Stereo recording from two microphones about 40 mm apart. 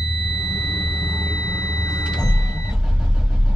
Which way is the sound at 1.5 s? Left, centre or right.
Right.